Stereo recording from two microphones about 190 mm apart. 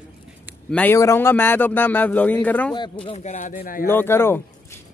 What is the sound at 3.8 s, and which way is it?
Speech, 10° left (ahead or behind).